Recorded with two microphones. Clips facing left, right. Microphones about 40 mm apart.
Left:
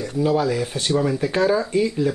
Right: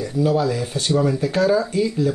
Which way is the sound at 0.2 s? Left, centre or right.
Centre.